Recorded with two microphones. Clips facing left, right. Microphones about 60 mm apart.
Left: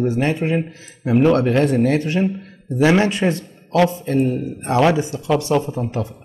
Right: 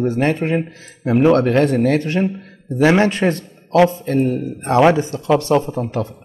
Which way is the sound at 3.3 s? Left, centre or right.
Right.